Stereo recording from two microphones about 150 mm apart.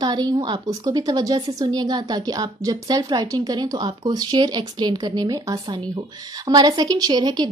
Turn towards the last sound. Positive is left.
turn(degrees=-30)  # may be behind; listen again after turning